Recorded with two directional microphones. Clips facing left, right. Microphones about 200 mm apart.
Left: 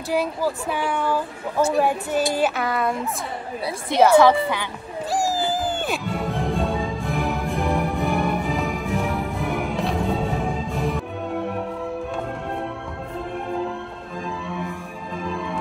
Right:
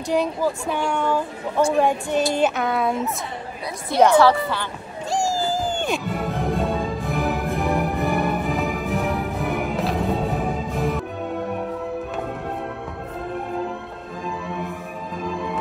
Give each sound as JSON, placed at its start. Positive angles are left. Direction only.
{"t": 0.5, "sound": "a woman's voice", "side_deg": 5}
{"t": 4.0, "sound": "a woman's voice", "side_deg": 10}
{"t": 5.5, "sound": "music", "side_deg": 0}